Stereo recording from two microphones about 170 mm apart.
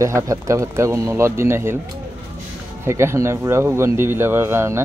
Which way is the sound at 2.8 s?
15° right (ahead or behind).